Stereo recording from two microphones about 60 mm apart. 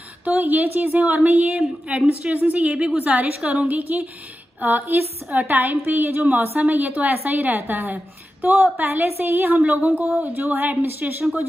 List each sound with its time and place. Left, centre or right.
0.2 s a woman's voice: right